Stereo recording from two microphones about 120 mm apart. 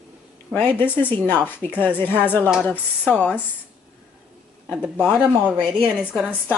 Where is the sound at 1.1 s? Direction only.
15° left (ahead or behind).